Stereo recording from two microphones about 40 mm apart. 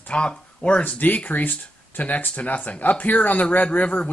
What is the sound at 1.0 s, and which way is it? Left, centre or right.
Speech, left.